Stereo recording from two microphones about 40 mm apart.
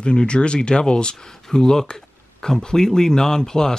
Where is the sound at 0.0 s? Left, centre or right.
Left.